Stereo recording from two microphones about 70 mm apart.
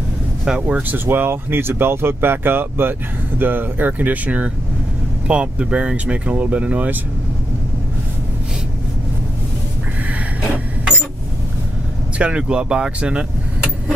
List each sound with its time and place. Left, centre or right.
0.5 s speech: centre
0.9 s speech: right
12.2 s speech: centre